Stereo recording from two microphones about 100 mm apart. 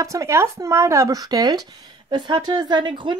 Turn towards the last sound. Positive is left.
turn(degrees=-50)  # may be behind; listen again after turning